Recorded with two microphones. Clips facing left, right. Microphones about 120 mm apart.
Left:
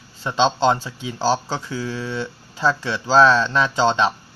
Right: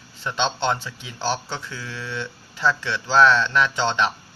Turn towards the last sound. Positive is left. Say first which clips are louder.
# left 4 dB
turn(degrees=35)  # may be behind; listen again after turning